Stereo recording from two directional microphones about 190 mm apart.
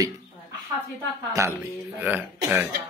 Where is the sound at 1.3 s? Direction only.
15° right (ahead or behind).